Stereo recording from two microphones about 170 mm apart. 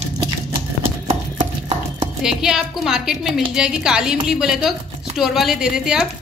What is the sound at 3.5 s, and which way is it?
A woman's voice, 5° right (ahead or behind).